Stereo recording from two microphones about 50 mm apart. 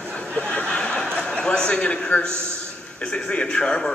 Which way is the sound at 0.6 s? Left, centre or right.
Centre.